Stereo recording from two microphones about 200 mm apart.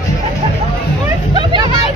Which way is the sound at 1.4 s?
25° right (ahead or behind).